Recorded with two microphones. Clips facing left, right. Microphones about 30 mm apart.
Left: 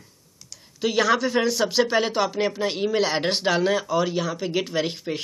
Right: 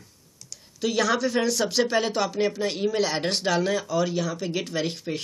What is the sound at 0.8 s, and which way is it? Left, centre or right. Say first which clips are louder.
Speech: left 3 dB; centre.